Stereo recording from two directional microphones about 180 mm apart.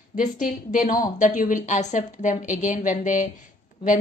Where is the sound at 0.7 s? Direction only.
45° left (ahead or behind).